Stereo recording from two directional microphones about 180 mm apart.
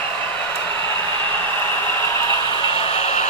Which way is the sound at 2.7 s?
35° left (ahead or behind).